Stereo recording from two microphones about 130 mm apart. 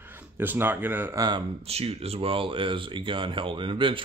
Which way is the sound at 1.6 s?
50° right (ahead or behind).